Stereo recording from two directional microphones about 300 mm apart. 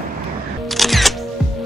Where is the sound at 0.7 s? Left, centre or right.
Centre.